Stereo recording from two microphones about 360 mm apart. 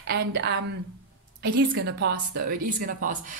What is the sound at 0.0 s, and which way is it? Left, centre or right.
A woman's voice, right.